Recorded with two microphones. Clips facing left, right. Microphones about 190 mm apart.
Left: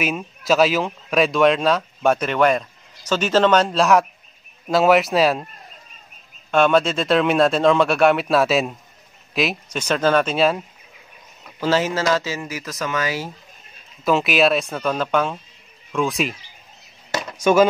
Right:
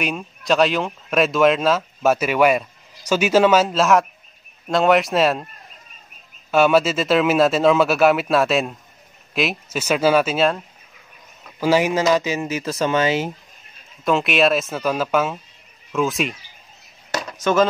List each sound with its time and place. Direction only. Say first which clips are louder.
0.0 s speech: left 1 dB; 5° left (ahead or behind)
6.5 s speech: right 1 dB; 5° right (ahead or behind)
11.6 s speech: right 3 dB; 15° right (ahead or behind)
14.0 s speech: even; centre (ahead or behind)